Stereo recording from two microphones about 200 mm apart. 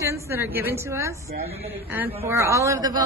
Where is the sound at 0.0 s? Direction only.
15° right (ahead or behind).